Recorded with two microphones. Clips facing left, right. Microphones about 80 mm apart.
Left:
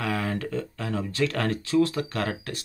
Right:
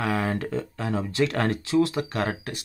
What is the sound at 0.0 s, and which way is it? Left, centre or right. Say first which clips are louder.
Speech: right 2 dB; right.